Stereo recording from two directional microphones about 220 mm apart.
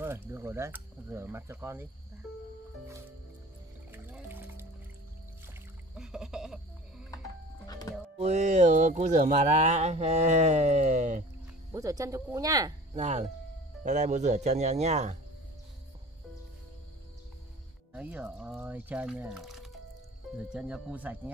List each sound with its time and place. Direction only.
0.0 s speech: 10° right (ahead or behind)
3.9 s music: 10° right (ahead or behind)
7.6 s music: 15° left (ahead or behind)
8.2 s speech: 30° right (ahead or behind)
11.7 s speech: 15° right (ahead or behind)
12.9 s speech: 30° right (ahead or behind)
17.9 s speech: 5° right (ahead or behind)